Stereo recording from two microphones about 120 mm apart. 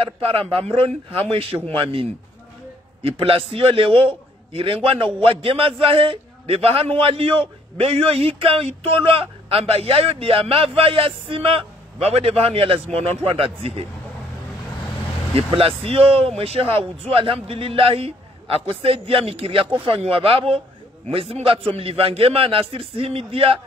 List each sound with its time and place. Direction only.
0.0 s a man's voice: 55° right (ahead or behind)
15.3 s a man's voice: 50° right (ahead or behind)